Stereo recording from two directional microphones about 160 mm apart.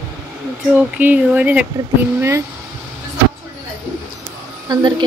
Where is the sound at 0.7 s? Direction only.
10° right (ahead or behind).